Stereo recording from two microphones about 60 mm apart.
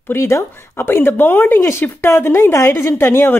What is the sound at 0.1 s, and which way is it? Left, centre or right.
Speech, left.